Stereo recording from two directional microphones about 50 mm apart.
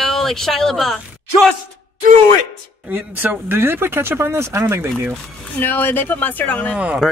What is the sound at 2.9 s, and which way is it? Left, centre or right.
Speech, right.